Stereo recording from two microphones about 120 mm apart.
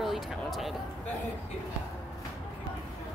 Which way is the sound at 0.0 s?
Centre (ahead or behind).